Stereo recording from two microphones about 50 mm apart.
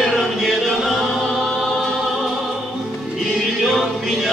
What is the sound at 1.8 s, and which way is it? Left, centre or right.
Music, centre.